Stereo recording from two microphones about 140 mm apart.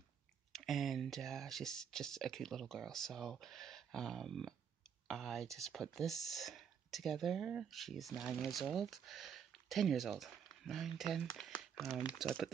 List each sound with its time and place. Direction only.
0.5 s speech: centre (ahead or behind)